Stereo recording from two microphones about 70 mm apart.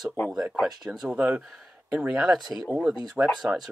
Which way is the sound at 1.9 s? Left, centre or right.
Centre.